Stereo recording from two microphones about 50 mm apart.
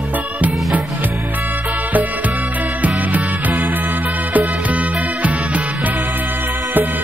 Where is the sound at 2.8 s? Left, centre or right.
Right.